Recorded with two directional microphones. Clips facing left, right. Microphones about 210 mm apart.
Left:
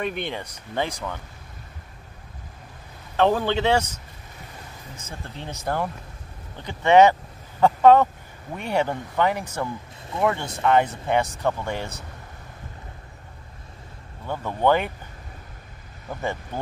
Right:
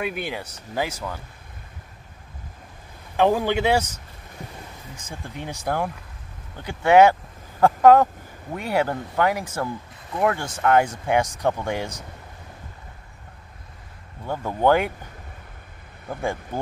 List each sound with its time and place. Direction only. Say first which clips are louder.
0.0 s speech: even; 5° right (ahead or behind)
3.2 s speech: right 1 dB; 10° right (ahead or behind)
5.0 s speech: right 2 dB; 15° right (ahead or behind)
10.1 s speech: right 1 dB; 25° left (ahead or behind)
10.6 s speech: right 1 dB; 5° right (ahead or behind)
14.2 s speech: right 1 dB; 10° right (ahead or behind)
16.1 s speech: right 2 dB; 10° right (ahead or behind)